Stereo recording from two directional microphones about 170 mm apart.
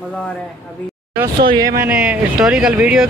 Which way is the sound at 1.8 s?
10° right (ahead or behind).